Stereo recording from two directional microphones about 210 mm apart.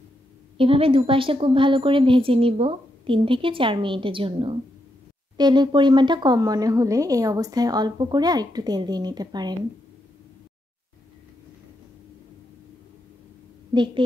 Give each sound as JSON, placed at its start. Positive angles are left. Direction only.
{"t": 0.6, "sound": "speech", "side_deg": -25}